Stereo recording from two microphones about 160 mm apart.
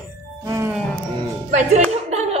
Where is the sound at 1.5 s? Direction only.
45° right (ahead or behind).